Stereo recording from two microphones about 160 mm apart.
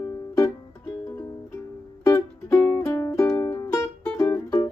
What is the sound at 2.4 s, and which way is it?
Music, 5° left (ahead or behind).